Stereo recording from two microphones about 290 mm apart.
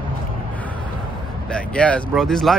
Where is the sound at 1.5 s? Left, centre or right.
Centre.